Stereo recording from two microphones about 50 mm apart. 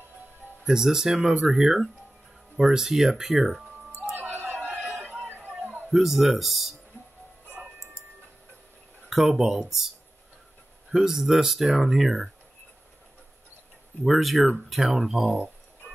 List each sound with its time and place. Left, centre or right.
0.7 s speech: centre
4.2 s a sound: right
5.6 s a sound: right
5.9 s speech: centre
9.1 s speech: centre
14.0 s speech: centre